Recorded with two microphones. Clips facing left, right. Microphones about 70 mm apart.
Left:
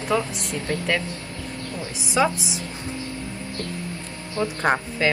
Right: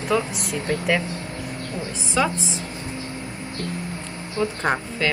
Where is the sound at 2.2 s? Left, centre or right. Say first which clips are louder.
Left 1 dB; centre.